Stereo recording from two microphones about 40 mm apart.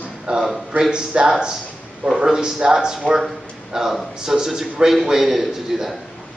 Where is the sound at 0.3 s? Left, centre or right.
Right; by 5.9 s centre.